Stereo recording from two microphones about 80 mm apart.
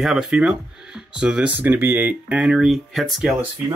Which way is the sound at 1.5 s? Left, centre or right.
Right.